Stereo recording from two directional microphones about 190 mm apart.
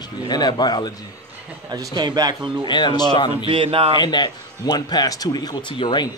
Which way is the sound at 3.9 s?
20° left (ahead or behind).